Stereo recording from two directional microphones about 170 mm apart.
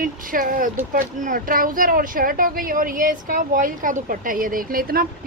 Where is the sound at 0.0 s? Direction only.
55° right (ahead or behind).